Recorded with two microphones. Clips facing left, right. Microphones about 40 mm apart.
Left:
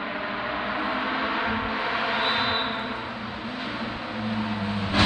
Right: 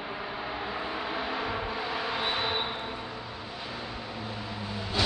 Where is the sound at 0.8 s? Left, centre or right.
Left.